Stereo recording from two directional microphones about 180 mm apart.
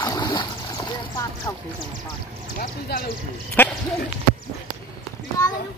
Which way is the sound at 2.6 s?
55° left (ahead or behind).